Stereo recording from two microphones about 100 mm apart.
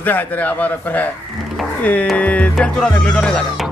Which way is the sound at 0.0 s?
15° left (ahead or behind).